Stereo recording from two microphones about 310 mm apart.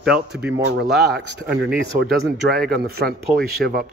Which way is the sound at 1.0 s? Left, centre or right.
Right.